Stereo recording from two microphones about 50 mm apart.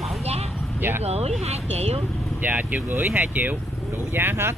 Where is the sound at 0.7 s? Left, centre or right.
Right.